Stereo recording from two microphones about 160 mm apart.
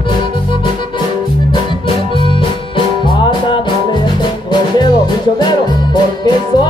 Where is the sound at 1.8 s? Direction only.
30° left (ahead or behind).